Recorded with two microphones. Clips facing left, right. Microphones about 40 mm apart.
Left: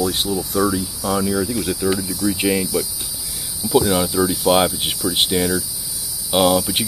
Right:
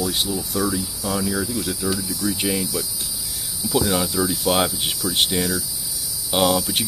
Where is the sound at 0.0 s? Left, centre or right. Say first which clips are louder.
Left 3 dB; centre.